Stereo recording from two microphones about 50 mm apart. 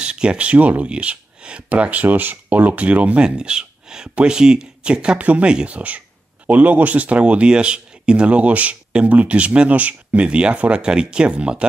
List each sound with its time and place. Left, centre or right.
0.0 s speech: centre
5.8 s speech: right